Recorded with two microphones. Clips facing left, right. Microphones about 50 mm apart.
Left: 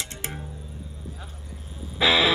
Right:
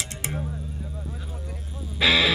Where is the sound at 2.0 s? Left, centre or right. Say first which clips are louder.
Even; centre.